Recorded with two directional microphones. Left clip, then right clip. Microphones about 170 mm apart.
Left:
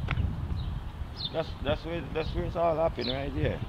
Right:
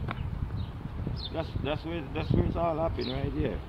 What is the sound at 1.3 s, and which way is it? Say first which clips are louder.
Speech: left 2 dB; 35° left (ahead or behind).